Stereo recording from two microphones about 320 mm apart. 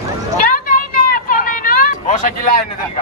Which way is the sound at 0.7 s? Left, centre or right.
Left.